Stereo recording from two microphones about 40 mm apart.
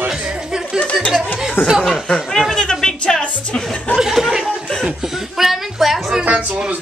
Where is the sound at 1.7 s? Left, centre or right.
Centre.